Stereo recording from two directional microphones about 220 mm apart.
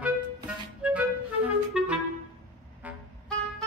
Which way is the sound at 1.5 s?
5° right (ahead or behind).